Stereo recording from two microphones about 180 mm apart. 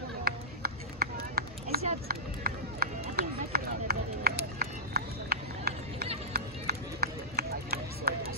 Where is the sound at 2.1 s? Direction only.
55° right (ahead or behind).